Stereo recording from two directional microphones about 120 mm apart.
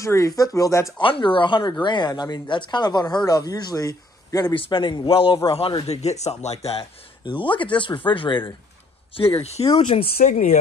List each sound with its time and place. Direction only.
0.0 s speech: 25° left (ahead or behind)
0.9 s speech: 45° left (ahead or behind)
4.6 s speech: 40° left (ahead or behind)
5.9 s speech: 65° left (ahead or behind)
7.2 s speech: 45° left (ahead or behind)
9.6 s speech: 55° left (ahead or behind)
10.2 s speech: 80° left